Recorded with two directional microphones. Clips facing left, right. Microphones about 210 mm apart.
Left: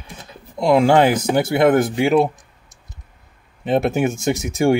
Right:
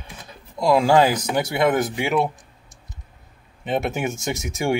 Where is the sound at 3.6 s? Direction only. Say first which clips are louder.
Left 6 dB; 35° left (ahead or behind).